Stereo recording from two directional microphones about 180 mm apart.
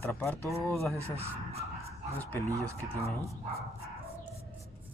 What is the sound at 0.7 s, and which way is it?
Speech, centre (ahead or behind).